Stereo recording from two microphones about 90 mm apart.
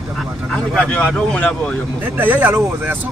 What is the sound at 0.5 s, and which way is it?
Speech, 5° left (ahead or behind).